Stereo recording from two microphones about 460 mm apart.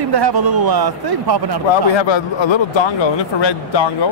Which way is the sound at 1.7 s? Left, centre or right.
Left.